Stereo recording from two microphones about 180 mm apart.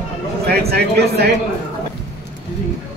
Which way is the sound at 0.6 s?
60° right (ahead or behind).